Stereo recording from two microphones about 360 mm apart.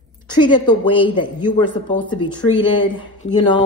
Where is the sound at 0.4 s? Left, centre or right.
Centre.